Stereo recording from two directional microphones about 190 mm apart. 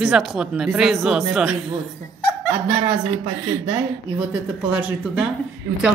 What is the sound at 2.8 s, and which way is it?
Speech, 25° right (ahead or behind).